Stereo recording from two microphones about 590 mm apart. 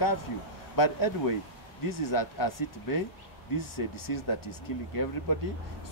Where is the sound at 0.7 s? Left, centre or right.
Left.